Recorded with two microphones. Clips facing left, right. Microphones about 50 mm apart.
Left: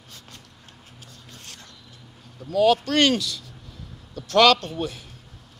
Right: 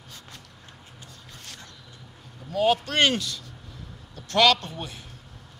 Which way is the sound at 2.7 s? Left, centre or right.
Right.